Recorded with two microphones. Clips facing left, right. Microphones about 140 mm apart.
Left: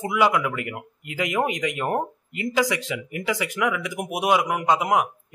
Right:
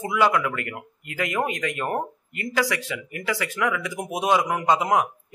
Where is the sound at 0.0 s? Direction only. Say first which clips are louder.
Even; 15° left (ahead or behind).